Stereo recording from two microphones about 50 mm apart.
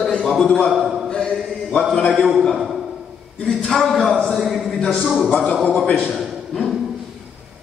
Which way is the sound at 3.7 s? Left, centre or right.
Centre.